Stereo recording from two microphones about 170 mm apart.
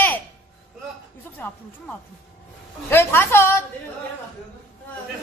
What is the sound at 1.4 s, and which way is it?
Speech, 10° left (ahead or behind).